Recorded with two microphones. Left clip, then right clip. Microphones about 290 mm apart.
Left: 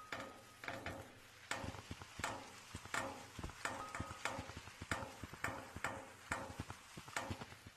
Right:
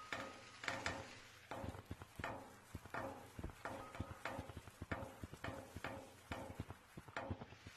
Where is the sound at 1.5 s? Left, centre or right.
Left.